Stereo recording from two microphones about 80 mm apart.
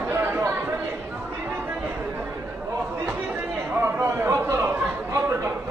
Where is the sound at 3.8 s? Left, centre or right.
Right.